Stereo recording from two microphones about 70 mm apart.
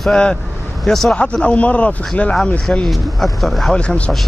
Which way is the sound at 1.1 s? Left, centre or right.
Centre.